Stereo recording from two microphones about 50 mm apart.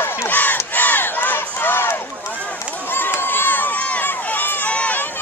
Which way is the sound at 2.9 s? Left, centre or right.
Left.